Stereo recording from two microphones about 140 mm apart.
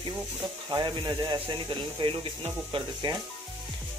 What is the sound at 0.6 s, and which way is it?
Speech, 30° right (ahead or behind).